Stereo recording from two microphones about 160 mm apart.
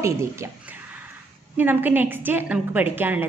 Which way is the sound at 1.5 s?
10° right (ahead or behind).